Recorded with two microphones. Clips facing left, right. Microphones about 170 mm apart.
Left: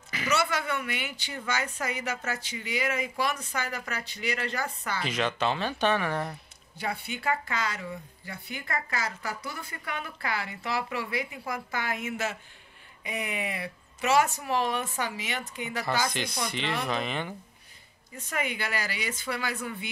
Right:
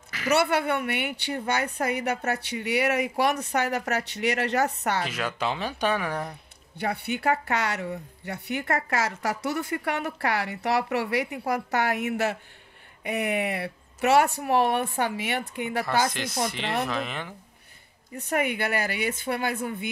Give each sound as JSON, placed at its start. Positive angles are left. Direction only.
{"t": 0.3, "sound": "a woman's voice", "side_deg": -60}
{"t": 5.1, "sound": "speech", "side_deg": -10}
{"t": 6.8, "sound": "a woman's voice", "side_deg": -65}
{"t": 16.1, "sound": "speech", "side_deg": 0}
{"t": 18.1, "sound": "speech", "side_deg": -60}